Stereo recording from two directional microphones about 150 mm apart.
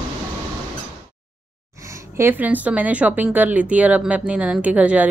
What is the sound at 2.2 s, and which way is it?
Speech, 10° right (ahead or behind).